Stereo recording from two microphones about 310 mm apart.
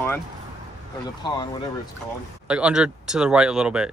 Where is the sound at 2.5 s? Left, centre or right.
Centre.